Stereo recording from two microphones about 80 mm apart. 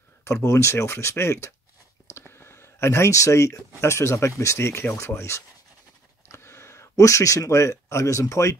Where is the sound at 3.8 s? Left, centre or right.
Left.